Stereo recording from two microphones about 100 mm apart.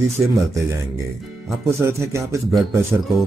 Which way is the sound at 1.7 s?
30° right (ahead or behind).